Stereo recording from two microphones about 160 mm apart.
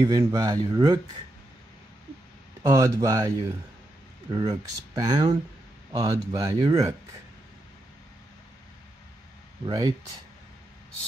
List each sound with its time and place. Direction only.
0.0 s speech: 20° right (ahead or behind)
2.6 s speech: 20° right (ahead or behind)
9.7 s speech: 25° right (ahead or behind)